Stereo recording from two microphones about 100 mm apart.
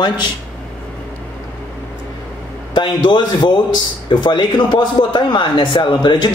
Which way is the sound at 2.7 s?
50° left (ahead or behind).